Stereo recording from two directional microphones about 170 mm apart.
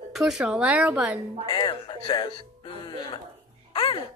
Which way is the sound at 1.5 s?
25° left (ahead or behind).